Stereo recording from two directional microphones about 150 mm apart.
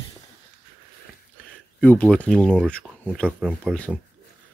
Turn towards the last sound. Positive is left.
turn(degrees=10)  # may be behind; listen again after turning